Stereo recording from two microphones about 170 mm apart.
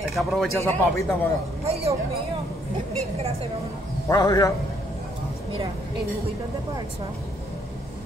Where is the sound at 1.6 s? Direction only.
35° right (ahead or behind).